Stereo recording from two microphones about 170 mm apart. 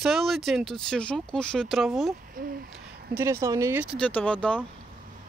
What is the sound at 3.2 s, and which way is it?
Speech, 15° right (ahead or behind).